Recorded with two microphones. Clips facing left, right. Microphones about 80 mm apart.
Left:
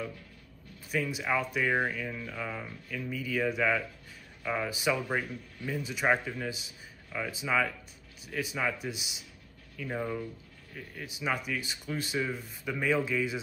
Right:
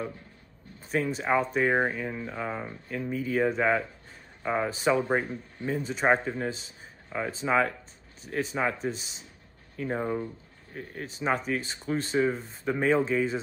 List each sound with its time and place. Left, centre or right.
0.9 s speech: right
9.8 s speech: right